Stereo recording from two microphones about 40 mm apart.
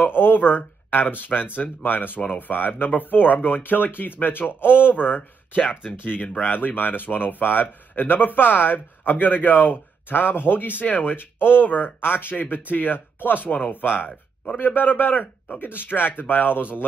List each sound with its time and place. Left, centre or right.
0.0 s speech: left
6.2 s speech: left
6.5 s speech: left
10.8 s speech: left
11.1 s speech: left